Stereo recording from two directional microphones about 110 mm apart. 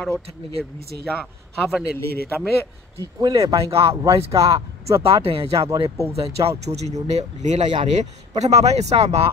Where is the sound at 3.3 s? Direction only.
30° right (ahead or behind).